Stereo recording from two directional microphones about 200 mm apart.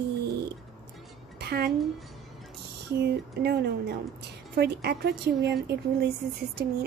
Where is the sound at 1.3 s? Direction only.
50° right (ahead or behind).